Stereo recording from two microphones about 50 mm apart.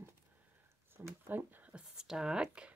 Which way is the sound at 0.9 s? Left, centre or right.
Right.